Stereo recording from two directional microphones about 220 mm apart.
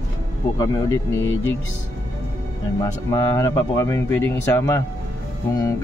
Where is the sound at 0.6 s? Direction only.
15° left (ahead or behind).